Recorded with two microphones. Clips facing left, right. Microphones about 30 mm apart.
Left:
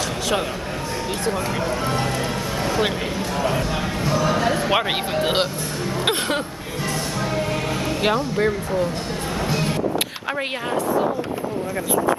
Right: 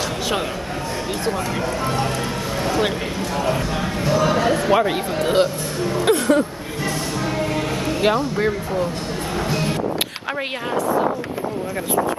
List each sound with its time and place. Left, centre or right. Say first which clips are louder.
2.6 s speech: right 1 dB; centre
4.7 s speech: right 2 dB; left
8.0 s speech: right 1 dB; centre
9.5 s music: even; centre